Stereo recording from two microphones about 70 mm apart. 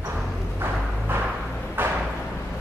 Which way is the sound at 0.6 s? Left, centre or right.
Right.